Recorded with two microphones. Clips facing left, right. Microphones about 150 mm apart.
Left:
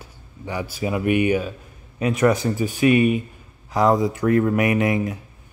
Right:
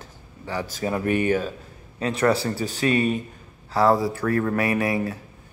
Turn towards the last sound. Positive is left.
turn(degrees=20)  # may be behind; listen again after turning